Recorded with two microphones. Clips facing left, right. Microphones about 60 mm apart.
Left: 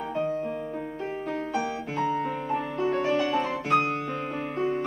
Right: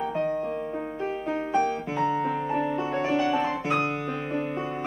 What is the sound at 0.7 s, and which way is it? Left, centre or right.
Music, centre.